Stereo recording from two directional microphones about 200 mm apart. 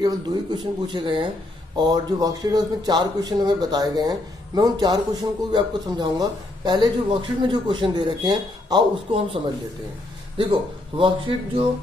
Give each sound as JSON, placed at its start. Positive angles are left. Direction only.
{"t": 0.6, "sound": "speech", "side_deg": -25}